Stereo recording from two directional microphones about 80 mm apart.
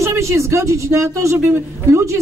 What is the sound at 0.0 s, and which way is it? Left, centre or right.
Speech, right.